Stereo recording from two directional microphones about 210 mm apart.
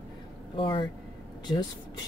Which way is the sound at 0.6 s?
25° left (ahead or behind).